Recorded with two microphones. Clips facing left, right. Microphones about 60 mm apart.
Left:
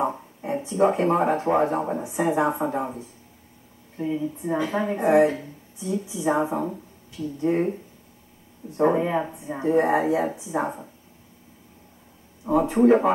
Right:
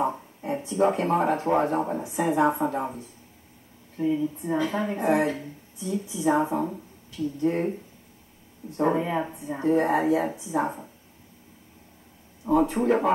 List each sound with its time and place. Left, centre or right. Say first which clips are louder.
0.0 s a sound: left 1 dB; centre
1.8 s a woman's voice: left 1 dB; centre
10.6 s a woman's voice: right 1 dB; centre
12.4 s a woman's voice: left 4 dB; centre